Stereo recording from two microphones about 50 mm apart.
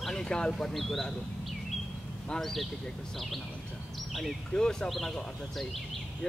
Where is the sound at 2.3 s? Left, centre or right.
Centre.